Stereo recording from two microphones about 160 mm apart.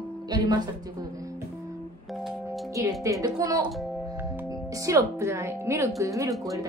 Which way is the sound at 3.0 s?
20° right (ahead or behind).